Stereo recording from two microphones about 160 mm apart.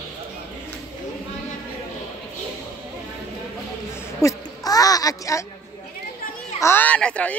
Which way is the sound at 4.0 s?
20° left (ahead or behind).